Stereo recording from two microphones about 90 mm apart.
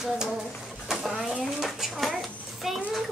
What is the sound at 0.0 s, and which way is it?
Bird, 5° right (ahead or behind).